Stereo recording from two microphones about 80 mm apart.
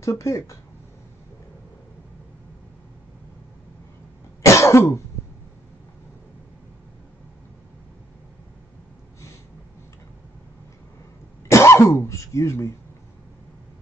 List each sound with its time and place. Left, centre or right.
0.0 s speech: left
4.4 s cough: left
11.4 s cough: left